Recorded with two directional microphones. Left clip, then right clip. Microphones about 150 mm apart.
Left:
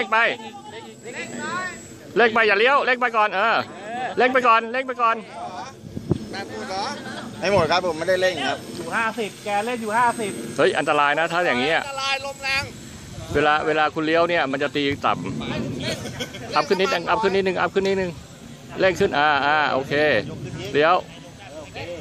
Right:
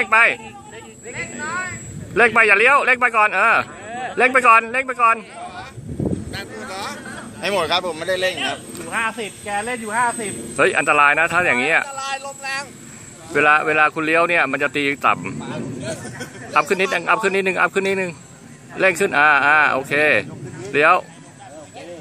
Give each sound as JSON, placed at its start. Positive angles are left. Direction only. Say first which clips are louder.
{"t": 0.0, "sound": "a man's voice", "louder": "right 5 dB", "side_deg": 0}
{"t": 1.4, "sound": "a man's voice", "louder": "right 2 dB", "side_deg": -10}
{"t": 3.8, "sound": "a sound", "louder": "even", "side_deg": 25}
{"t": 4.1, "sound": "a man's voice", "louder": "right 4 dB", "side_deg": 0}
{"t": 6.7, "sound": "a sound", "louder": "left 2 dB", "side_deg": 50}
{"t": 7.1, "sound": "a sound", "louder": "even", "side_deg": 25}
{"t": 7.4, "sound": "speech", "louder": "even", "side_deg": 50}
{"t": 10.5, "sound": "a man's voice", "louder": "right 4 dB", "side_deg": 0}
{"t": 11.9, "sound": "a man's voice", "louder": "left 2 dB", "side_deg": 45}
{"t": 13.3, "sound": "a man's voice", "louder": "right 4 dB", "side_deg": 0}
{"t": 16.5, "sound": "a man's voice", "louder": "right 3 dB", "side_deg": 0}